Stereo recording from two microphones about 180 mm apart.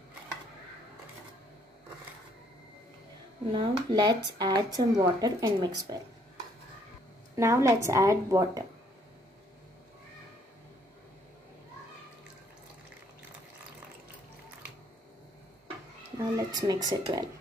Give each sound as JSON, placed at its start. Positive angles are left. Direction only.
{"t": 3.5, "sound": "speech", "side_deg": -25}
{"t": 7.3, "sound": "a woman's voice", "side_deg": -15}
{"t": 16.3, "sound": "speech", "side_deg": -20}